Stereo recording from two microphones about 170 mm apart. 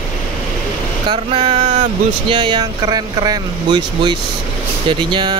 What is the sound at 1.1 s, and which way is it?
Speech, 30° right (ahead or behind).